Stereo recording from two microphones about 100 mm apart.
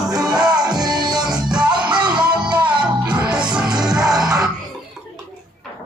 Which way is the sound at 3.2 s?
10° right (ahead or behind).